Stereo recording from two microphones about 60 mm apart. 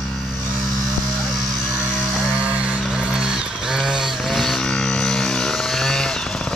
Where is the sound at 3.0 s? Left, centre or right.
Centre.